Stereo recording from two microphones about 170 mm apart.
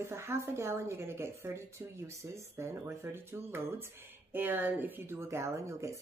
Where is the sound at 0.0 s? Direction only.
15° right (ahead or behind).